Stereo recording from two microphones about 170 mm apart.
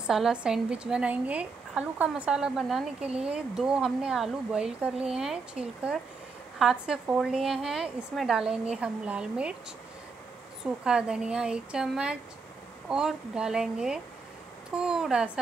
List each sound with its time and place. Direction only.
0.0 s speech: 5° right (ahead or behind)
10.6 s speech: 5° right (ahead or behind)